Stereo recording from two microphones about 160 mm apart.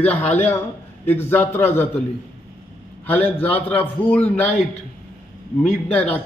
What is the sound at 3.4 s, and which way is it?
A man's voice, 10° left (ahead or behind).